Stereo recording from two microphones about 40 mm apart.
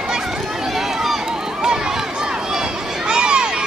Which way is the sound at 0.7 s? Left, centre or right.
Centre.